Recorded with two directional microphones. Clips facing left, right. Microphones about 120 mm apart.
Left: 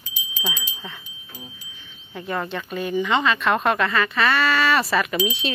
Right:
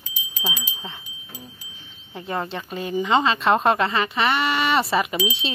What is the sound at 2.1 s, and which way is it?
Speech, 25° right (ahead or behind).